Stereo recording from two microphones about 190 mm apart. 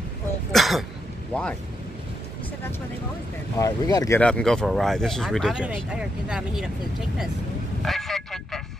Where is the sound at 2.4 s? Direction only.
10° left (ahead or behind).